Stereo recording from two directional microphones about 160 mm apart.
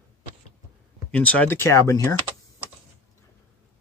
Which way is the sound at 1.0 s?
10° left (ahead or behind).